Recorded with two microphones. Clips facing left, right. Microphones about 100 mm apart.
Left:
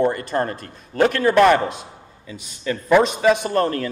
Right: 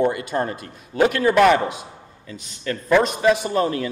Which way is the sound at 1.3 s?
5° right (ahead or behind).